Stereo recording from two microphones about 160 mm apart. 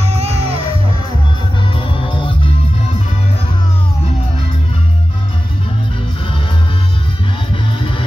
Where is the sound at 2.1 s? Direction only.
35° left (ahead or behind).